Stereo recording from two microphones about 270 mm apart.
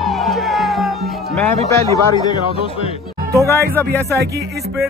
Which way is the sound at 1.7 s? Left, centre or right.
Centre.